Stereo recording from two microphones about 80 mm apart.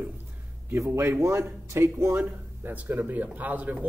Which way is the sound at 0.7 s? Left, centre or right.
Right.